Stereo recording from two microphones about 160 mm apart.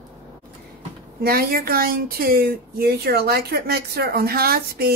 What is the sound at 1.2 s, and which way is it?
Speech, 65° right (ahead or behind).